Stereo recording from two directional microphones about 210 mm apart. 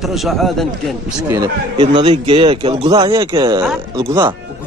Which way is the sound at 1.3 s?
20° right (ahead or behind).